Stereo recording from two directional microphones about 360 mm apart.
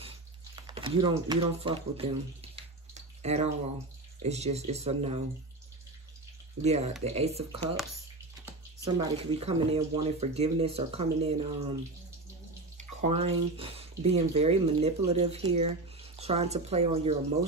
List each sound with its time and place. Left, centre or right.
0.6 s a sound: centre
4.2 s speech: centre
6.6 s speech: centre
8.9 s speech: centre
12.7 s speech: centre